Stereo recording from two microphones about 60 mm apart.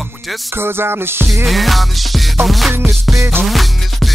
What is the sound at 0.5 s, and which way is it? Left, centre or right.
Music, right.